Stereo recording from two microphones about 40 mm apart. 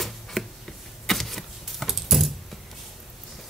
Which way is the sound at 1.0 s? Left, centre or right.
Centre.